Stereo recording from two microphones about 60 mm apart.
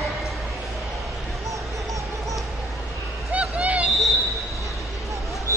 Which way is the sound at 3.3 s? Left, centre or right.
Right.